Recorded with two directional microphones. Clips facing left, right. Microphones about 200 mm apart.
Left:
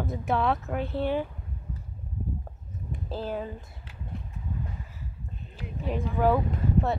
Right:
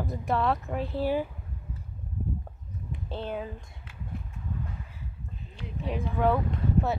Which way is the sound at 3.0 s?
Centre (ahead or behind).